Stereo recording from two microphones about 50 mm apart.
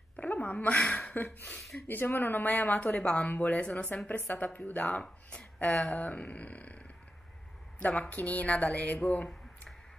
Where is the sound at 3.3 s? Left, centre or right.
Left.